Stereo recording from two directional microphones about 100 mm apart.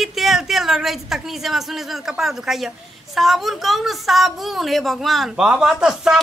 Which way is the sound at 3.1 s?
Centre (ahead or behind).